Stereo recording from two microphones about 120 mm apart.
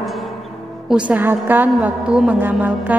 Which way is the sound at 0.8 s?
10° right (ahead or behind).